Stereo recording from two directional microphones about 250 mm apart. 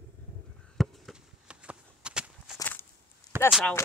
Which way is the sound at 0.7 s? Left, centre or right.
Centre.